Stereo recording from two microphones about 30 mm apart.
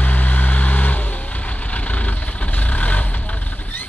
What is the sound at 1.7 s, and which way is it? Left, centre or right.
Vehicle, left.